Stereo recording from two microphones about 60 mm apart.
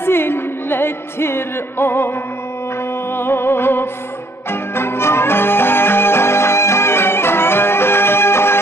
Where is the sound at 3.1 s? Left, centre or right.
Left.